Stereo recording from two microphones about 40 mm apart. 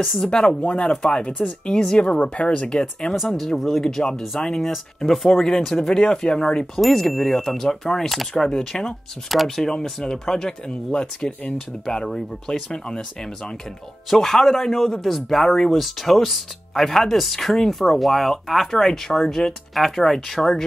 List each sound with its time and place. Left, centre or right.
0.0 s speech: centre
0.3 s speech: centre
0.6 s speech: left
1.0 s speech: left
2.8 s speech: centre
5.3 s speech: centre
5.9 s speech: centre
8.4 s speech: centre
9.3 s speech: centre
14.1 s speech: centre